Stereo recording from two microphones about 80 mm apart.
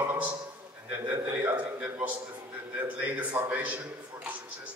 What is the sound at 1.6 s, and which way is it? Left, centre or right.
A man's voice, centre.